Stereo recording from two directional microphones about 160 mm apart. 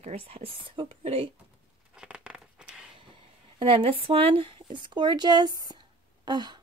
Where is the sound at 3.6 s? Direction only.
35° right (ahead or behind).